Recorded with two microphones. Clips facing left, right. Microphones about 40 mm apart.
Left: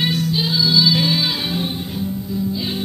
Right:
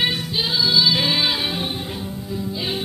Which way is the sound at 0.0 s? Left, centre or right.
Centre.